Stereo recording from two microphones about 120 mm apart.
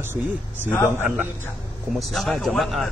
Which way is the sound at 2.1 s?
Centre (ahead or behind).